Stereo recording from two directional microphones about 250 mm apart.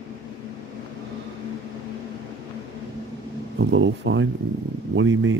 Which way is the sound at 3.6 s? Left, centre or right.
Right.